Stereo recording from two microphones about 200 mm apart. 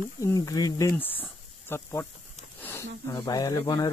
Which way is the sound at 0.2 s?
15° left (ahead or behind).